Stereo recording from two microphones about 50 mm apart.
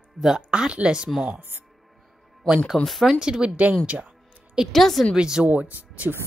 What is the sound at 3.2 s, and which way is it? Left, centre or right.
Speech, centre.